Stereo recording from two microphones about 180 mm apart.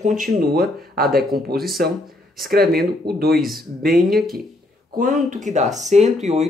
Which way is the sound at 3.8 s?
55° right (ahead or behind).